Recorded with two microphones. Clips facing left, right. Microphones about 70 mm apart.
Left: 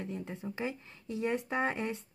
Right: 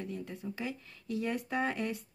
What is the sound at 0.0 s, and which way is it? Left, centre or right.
Speech, left.